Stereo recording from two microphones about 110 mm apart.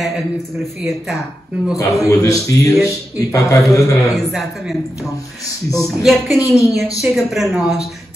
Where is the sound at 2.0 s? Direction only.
30° left (ahead or behind).